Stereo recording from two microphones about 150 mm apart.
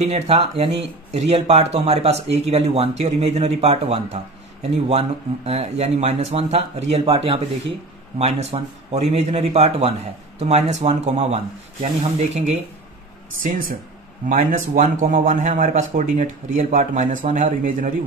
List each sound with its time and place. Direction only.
0.0 s speech: 45° right (ahead or behind)
13.4 s speech: 70° right (ahead or behind)